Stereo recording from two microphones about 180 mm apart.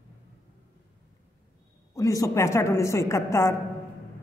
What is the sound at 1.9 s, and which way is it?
A woman's voice, 20° left (ahead or behind).